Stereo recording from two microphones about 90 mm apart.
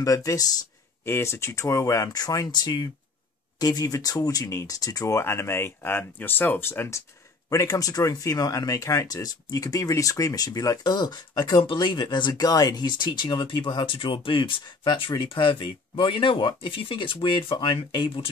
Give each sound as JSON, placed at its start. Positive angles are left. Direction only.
{"t": 0.0, "sound": "speech", "side_deg": 35}
{"t": 2.1, "sound": "speech", "side_deg": 50}
{"t": 3.5, "sound": "speech", "side_deg": 45}
{"t": 7.4, "sound": "speech", "side_deg": 40}
{"t": 11.6, "sound": "speech", "side_deg": 65}
{"t": 15.2, "sound": "speech", "side_deg": 65}